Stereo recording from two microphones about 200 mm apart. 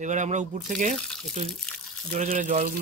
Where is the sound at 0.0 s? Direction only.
35° right (ahead or behind).